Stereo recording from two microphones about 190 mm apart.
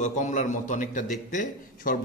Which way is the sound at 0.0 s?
40° left (ahead or behind).